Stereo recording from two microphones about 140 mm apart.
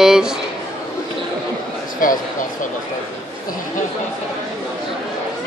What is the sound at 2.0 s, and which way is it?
Speech, 80° left.